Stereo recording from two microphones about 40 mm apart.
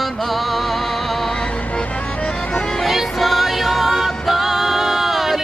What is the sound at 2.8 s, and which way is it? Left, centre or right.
Music, centre.